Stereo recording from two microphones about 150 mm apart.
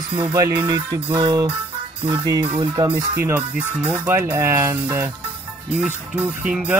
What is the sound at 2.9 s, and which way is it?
Speech, 15° right (ahead or behind).